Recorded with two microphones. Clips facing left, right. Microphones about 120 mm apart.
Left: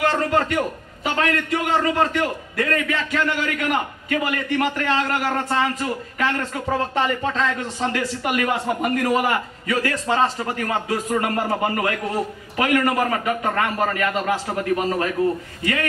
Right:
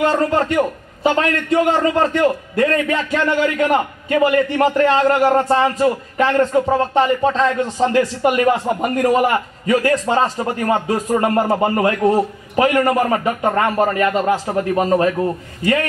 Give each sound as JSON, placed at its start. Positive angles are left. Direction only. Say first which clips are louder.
{"t": 0.0, "sound": "a man's voice", "louder": "right 4 dB", "side_deg": -30}